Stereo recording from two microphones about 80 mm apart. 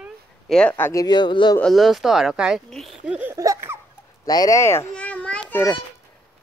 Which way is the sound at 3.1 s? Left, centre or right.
Centre.